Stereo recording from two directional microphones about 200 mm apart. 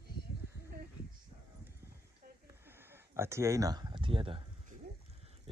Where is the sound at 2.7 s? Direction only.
10° right (ahead or behind).